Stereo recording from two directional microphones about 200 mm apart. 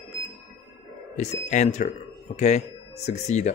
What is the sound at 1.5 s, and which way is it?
Speech, 35° left (ahead or behind).